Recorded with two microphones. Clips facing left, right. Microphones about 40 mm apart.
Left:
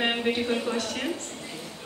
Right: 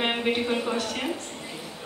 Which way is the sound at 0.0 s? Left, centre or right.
Centre.